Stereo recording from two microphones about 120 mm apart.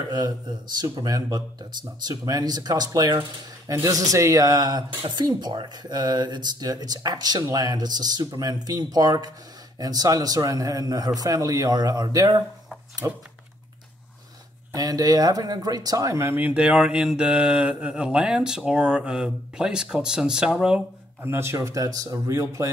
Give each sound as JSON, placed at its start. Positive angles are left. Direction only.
{"t": 0.1, "sound": "speech", "side_deg": -35}
{"t": 14.7, "sound": "speech", "side_deg": -30}
{"t": 21.2, "sound": "speech", "side_deg": -20}